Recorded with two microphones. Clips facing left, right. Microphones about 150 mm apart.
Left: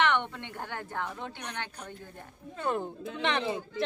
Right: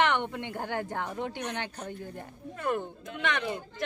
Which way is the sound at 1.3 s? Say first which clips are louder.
Right 5 dB; 10° right (ahead or behind).